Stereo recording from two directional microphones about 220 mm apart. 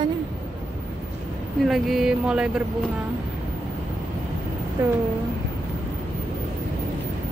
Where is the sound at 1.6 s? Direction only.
Centre (ahead or behind).